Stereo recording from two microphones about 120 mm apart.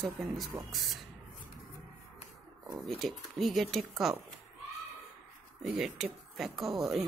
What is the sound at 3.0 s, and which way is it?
Speech, centre (ahead or behind).